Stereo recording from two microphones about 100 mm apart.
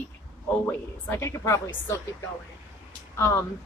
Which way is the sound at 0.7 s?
20° left (ahead or behind).